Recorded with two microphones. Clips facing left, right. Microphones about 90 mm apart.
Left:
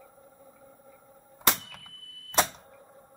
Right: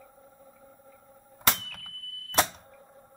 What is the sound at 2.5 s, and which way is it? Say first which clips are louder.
Vehicle: even; 5° left (ahead or behind).